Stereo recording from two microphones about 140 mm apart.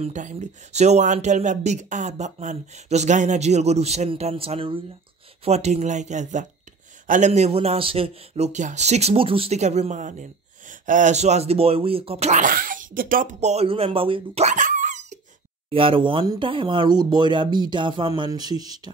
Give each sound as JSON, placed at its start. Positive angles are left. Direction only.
{"t": 0.0, "sound": "speech", "side_deg": -60}
{"t": 12.3, "sound": "speech", "side_deg": -75}
{"t": 14.4, "sound": "dog", "side_deg": -60}
{"t": 15.7, "sound": "speech", "side_deg": -40}